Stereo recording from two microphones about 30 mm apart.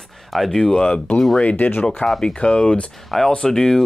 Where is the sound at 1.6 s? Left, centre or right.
Left.